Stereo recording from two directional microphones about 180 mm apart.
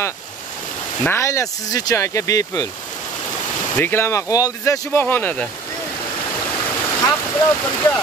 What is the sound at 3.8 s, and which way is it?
Speech, 15° left (ahead or behind).